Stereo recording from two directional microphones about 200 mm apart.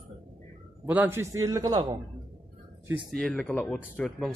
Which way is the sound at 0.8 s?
10° right (ahead or behind).